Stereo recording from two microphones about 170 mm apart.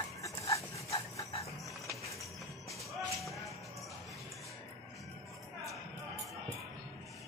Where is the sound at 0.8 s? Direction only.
35° left (ahead or behind).